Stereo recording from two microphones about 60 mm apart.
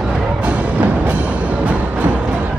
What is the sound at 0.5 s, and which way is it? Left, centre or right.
Music, right.